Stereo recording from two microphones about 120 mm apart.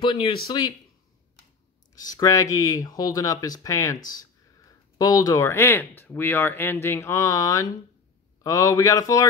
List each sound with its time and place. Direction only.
0.0 s speech: 45° left (ahead or behind)
2.0 s speech: 30° left (ahead or behind)